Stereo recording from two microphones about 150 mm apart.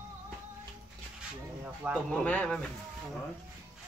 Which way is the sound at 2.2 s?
10° left (ahead or behind).